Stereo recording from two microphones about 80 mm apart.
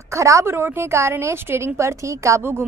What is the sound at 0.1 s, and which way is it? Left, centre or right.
A woman's voice, right.